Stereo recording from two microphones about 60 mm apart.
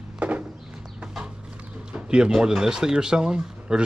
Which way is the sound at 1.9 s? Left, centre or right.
Centre.